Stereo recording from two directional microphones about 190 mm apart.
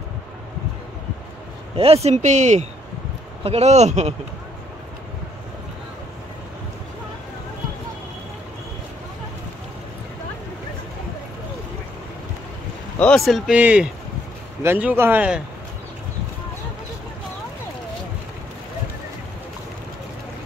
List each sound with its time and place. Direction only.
1.8 s speech: 30° right (ahead or behind)
13.0 s speech: centre (ahead or behind)